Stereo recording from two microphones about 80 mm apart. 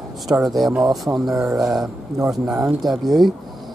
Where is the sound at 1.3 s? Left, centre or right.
Right.